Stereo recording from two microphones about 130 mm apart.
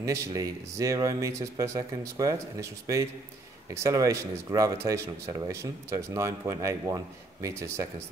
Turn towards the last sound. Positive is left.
turn(degrees=-20)  # may be behind; listen again after turning